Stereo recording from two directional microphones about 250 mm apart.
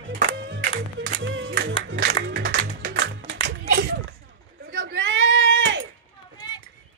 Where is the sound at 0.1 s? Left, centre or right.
Right.